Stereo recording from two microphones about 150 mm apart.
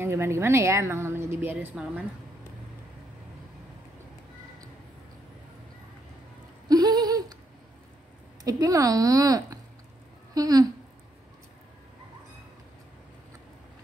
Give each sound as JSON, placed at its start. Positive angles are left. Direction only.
{"t": 0.0, "sound": "a woman's voice", "side_deg": -15}
{"t": 6.7, "sound": "a sound", "side_deg": -25}
{"t": 8.5, "sound": "speech", "side_deg": -25}